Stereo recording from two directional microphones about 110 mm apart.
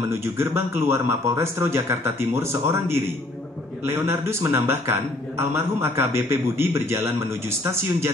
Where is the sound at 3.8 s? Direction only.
20° right (ahead or behind).